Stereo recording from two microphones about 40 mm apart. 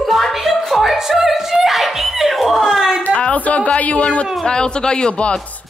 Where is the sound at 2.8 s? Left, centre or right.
Centre.